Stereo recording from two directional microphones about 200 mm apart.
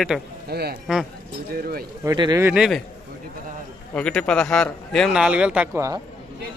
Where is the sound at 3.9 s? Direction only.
5° left (ahead or behind); by 6.0 s 15° right (ahead or behind).